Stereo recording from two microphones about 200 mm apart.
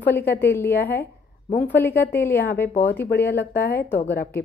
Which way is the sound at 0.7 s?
50° left (ahead or behind).